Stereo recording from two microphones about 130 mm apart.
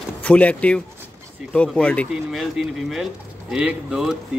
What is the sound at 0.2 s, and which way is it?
Speech, 10° left (ahead or behind).